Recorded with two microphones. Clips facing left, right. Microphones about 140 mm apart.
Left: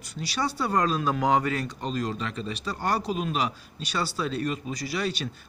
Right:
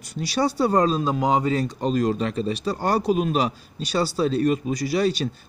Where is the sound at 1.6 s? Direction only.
45° right (ahead or behind).